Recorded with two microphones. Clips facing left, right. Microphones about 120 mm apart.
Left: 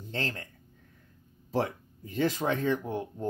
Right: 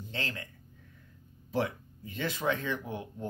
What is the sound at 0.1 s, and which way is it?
Speech, 40° left (ahead or behind).